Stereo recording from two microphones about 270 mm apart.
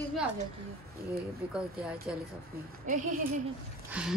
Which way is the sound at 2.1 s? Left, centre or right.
Centre.